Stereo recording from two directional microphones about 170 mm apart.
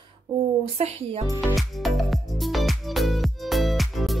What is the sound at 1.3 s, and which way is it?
Music, centre (ahead or behind).